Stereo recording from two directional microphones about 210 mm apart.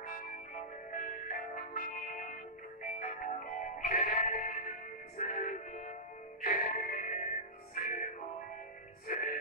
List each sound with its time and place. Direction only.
0.9 s music: 40° left (ahead or behind)
9.1 s music: 40° left (ahead or behind)